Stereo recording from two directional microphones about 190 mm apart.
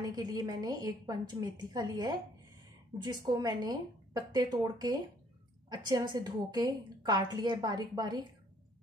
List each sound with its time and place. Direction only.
0.0 s a woman's voice: 20° right (ahead or behind)